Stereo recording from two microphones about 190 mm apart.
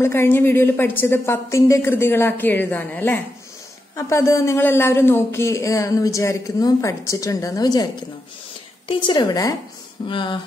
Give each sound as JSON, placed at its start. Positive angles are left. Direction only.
{"t": 0.0, "sound": "a woman's voice", "side_deg": 10}